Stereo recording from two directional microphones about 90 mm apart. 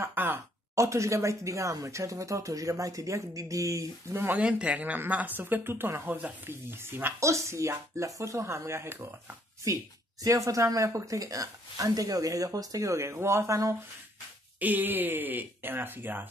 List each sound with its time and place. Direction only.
0.0 s a sound: 25° right (ahead or behind)
0.7 s a woman's voice: 35° right (ahead or behind)
4.2 s a woman's voice: 15° right (ahead or behind)
10.2 s a woman's voice: 35° right (ahead or behind)
14.6 s a woman's voice: 20° right (ahead or behind)